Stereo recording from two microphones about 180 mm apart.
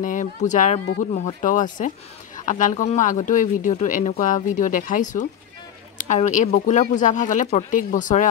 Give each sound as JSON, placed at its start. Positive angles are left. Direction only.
{"t": 0.0, "sound": "speech", "side_deg": 45}
{"t": 2.3, "sound": "a sound", "side_deg": 45}
{"t": 2.7, "sound": "speech", "side_deg": 40}